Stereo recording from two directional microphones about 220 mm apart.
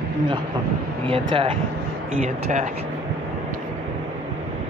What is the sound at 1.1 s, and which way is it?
Speech, 25° right (ahead or behind).